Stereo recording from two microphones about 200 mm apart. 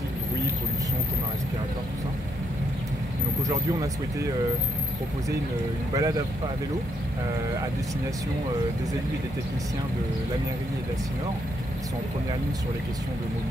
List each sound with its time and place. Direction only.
5.9 s speech: 15° right (ahead or behind)